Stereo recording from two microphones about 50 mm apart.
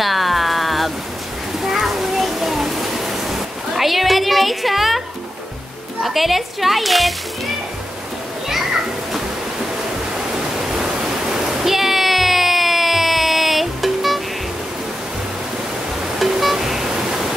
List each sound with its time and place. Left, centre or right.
0.0 s music: centre
1.6 s a sound: centre
6.0 s speech: centre
10.8 s pink noise: centre
16.2 s music: centre